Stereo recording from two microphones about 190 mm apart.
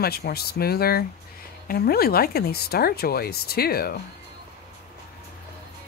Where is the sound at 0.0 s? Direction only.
55° left (ahead or behind).